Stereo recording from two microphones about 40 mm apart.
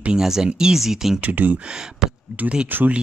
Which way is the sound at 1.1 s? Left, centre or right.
Right.